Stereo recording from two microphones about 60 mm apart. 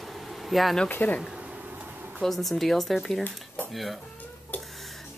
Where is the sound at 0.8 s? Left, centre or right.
Left.